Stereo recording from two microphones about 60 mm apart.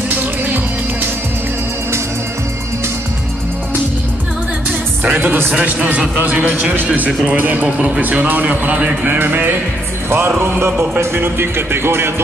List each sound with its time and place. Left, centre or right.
0.1 s music: right
5.0 s a man's voice: right
7.6 s a man's voice: centre
8.0 s a man's voice: right
10.0 s music: right